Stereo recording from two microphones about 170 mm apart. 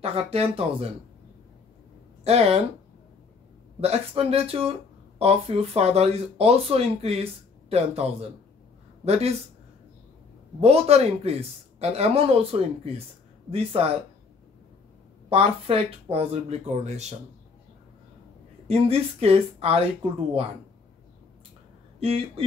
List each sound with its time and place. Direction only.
0.0 s speech: 35° right (ahead or behind)
2.2 s speech: 35° right (ahead or behind)
3.8 s speech: 35° right (ahead or behind)
10.6 s speech: 40° right (ahead or behind)
15.2 s speech: 35° right (ahead or behind)
18.7 s speech: 35° right (ahead or behind)
22.0 s speech: 35° right (ahead or behind)